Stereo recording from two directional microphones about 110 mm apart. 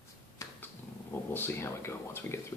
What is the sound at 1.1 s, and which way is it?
Speech, 20° left (ahead or behind).